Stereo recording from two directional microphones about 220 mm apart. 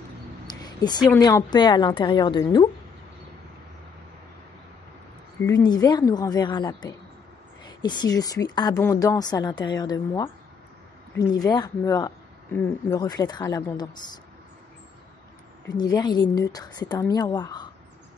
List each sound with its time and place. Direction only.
0.5 s a sound: 20° left (ahead or behind)
1.2 s a woman's voice: 20° left (ahead or behind)
5.7 s a woman's voice: 20° left (ahead or behind)
15.8 s a woman's voice: 20° left (ahead or behind)